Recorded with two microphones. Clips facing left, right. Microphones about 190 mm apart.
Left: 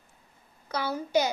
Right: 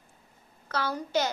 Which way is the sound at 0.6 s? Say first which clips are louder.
Even; 15° left (ahead or behind).